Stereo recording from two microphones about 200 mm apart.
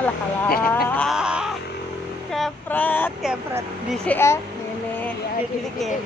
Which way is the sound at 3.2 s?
5° right (ahead or behind).